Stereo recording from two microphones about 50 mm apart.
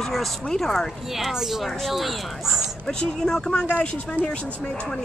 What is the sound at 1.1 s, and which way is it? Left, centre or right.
Speech, centre.